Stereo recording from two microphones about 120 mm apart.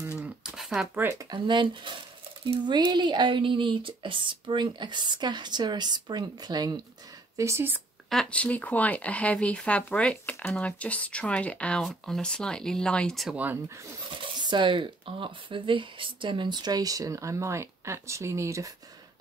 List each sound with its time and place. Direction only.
0.6 s a sound: 5° right (ahead or behind)
0.9 s speech: 25° right (ahead or behind)
1.3 s speech: 40° right (ahead or behind)
7.3 s speech: 25° right (ahead or behind)
8.1 s speech: 5° left (ahead or behind)
14.2 s speech: 40° right (ahead or behind); by 18.7 s 25° right (ahead or behind)